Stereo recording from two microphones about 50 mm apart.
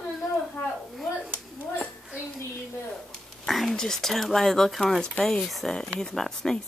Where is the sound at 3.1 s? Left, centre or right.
Centre.